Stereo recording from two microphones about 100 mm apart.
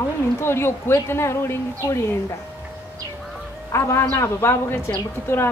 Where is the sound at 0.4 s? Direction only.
25° left (ahead or behind).